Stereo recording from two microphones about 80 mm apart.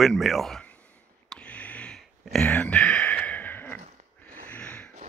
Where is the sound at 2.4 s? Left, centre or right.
Centre.